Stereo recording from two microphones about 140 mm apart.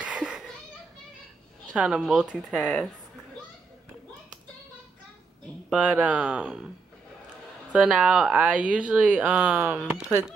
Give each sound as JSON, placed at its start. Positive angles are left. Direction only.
{"t": 0.0, "sound": "a sound", "side_deg": -5}
{"t": 1.8, "sound": "a woman's voice", "side_deg": -5}
{"t": 5.7, "sound": "speech", "side_deg": -10}
{"t": 7.7, "sound": "speech", "side_deg": -5}
{"t": 9.9, "sound": "speech", "side_deg": -5}